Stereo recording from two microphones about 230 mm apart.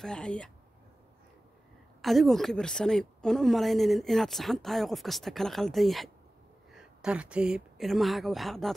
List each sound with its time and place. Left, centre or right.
0.0 s a woman's voice: centre
2.0 s a woman's voice: centre